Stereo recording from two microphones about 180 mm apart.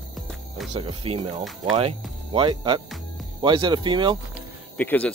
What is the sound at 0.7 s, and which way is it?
Speech, 30° right (ahead or behind).